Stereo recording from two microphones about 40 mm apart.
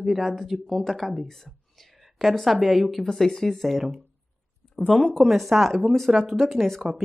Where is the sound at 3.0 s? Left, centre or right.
Centre.